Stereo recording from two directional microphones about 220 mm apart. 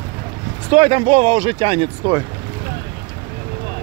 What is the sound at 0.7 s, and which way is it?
Speech, 25° right (ahead or behind).